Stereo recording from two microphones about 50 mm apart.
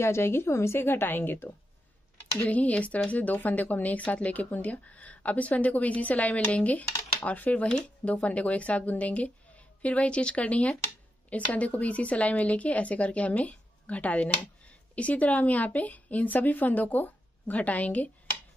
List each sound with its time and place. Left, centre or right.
0.0 s a woman's voice: left
2.4 s a woman's voice: left